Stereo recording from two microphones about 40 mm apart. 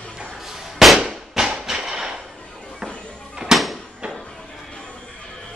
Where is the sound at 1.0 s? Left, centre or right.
Centre.